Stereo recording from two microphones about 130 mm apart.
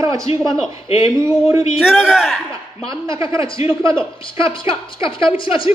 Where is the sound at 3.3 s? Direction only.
40° left (ahead or behind).